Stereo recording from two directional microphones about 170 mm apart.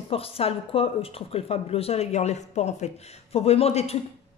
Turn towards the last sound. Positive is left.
turn(degrees=40)  # may be behind; listen again after turning